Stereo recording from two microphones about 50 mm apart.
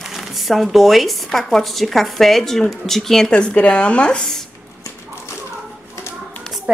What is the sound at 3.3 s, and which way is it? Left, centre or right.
A woman's voice, centre.